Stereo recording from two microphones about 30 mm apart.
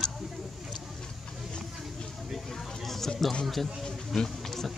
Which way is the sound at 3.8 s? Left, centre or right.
Centre.